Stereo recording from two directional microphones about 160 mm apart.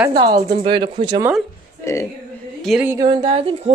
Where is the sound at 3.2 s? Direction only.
40° right (ahead or behind).